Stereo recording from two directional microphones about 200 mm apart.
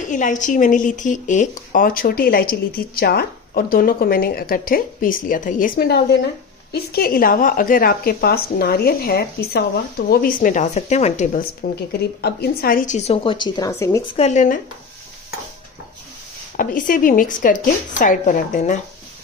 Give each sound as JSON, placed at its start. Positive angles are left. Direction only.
{"t": 0.0, "sound": "speech", "side_deg": 40}
{"t": 11.6, "sound": "a woman's voice", "side_deg": 50}
{"t": 14.0, "sound": "a woman's voice", "side_deg": 30}
{"t": 16.5, "sound": "speech", "side_deg": 40}